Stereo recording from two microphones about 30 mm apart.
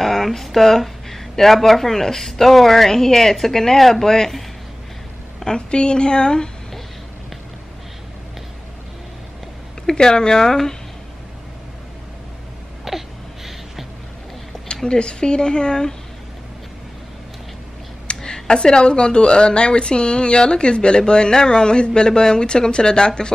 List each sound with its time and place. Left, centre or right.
0.0 s speech: centre
5.7 s speech: left
9.9 s speech: left
12.9 s a sound: centre
14.9 s speech: left
18.0 s speech: left